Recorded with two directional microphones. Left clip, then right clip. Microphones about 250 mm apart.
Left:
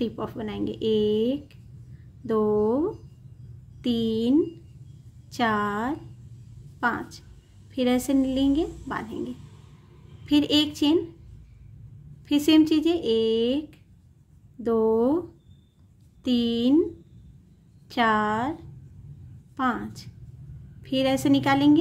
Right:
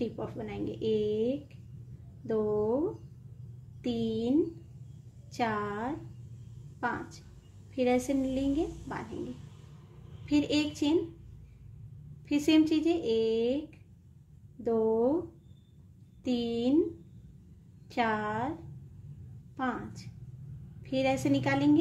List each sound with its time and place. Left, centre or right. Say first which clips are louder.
0.0 s speech: left 6 dB; centre
3.8 s speech: left 6 dB; centre
10.2 s speech: left 7 dB; centre
12.3 s speech: left 6 dB; centre
16.3 s speech: left 6 dB; centre
17.8 s speech: left 8 dB; centre
19.5 s speech: left 8 dB; centre